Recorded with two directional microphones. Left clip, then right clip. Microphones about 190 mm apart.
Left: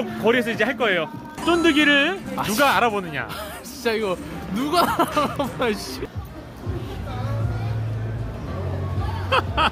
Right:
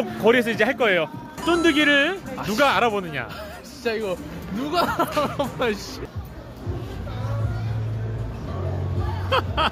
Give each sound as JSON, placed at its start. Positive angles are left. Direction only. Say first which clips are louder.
{"t": 0.0, "sound": "speech", "louder": "right 2 dB", "side_deg": -25}
{"t": 1.4, "sound": "speech", "louder": "left 1 dB", "side_deg": -5}
{"t": 3.8, "sound": "speech", "louder": "left 2 dB", "side_deg": 20}
{"t": 9.3, "sound": "snicker", "louder": "left 2 dB", "side_deg": 0}